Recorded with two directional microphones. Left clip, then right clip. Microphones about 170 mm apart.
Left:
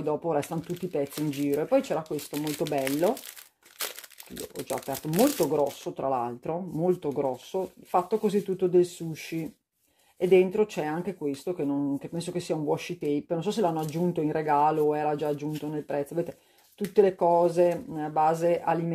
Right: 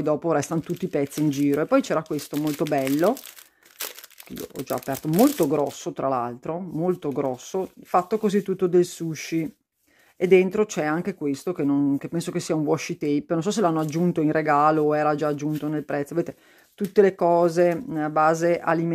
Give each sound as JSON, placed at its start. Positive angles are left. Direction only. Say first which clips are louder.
{"t": 0.0, "sound": "speech", "louder": "right 5 dB", "side_deg": -50}
{"t": 5.2, "sound": "speech", "louder": "right 4 dB", "side_deg": -45}
{"t": 5.9, "sound": "speech", "louder": "right 4 dB", "side_deg": -35}
{"t": 7.1, "sound": "speech", "louder": "right 2 dB", "side_deg": -40}